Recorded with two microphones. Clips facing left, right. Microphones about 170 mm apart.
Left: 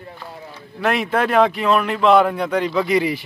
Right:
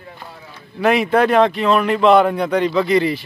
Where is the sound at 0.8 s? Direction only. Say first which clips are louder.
Right 5 dB; centre (ahead or behind).